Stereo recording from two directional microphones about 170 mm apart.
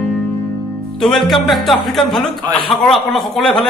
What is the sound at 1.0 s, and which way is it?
Speech, centre (ahead or behind).